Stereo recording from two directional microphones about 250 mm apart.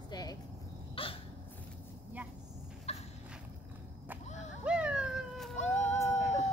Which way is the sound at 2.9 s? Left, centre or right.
Left.